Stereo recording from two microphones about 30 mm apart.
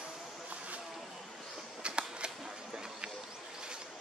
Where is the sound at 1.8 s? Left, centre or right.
Right.